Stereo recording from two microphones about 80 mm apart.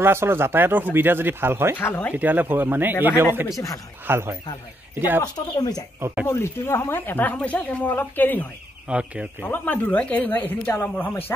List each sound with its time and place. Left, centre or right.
0.0 s speech: right
1.8 s speech: left
2.1 s speech: right
3.5 s speech: left
4.0 s speech: right
5.2 s speech: left
6.2 s speech: left
8.8 s speech: centre
9.5 s speech: centre